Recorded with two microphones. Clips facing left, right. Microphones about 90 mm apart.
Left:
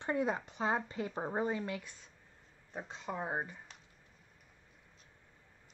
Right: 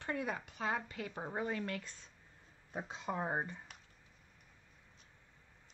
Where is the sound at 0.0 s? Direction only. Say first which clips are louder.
Left 5 dB; 25° left (ahead or behind).